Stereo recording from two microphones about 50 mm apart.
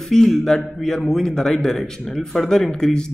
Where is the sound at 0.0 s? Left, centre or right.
Centre.